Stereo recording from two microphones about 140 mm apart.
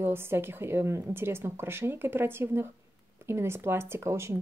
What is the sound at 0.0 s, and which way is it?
Speech, 15° right (ahead or behind).